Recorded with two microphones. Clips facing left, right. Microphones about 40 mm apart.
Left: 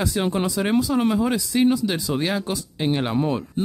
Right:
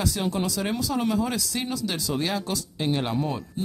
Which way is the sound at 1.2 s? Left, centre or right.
Centre.